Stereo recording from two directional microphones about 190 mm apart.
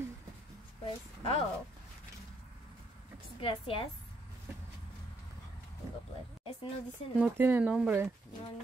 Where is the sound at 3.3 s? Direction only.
30° left (ahead or behind).